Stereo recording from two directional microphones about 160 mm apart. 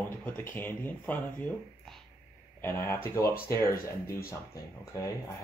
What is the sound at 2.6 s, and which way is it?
Speech, 15° left (ahead or behind).